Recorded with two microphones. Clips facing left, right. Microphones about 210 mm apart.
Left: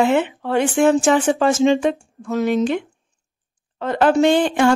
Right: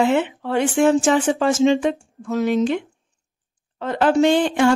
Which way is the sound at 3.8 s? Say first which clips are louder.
Left 1 dB; 55° left (ahead or behind).